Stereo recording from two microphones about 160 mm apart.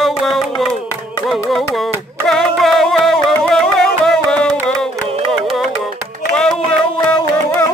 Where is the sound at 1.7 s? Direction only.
Centre (ahead or behind).